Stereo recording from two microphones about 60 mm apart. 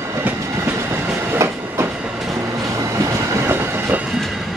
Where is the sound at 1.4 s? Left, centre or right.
Right.